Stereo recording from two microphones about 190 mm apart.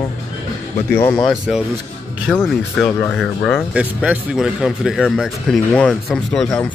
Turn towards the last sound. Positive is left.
turn(degrees=5)  # may be behind; listen again after turning